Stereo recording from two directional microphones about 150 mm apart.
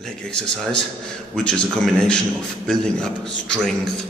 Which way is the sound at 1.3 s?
5° left (ahead or behind).